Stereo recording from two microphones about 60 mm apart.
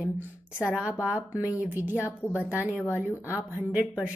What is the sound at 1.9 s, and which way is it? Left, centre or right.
Speech, left.